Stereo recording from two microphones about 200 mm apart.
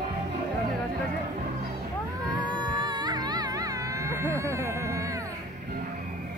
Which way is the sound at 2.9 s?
20° right (ahead or behind).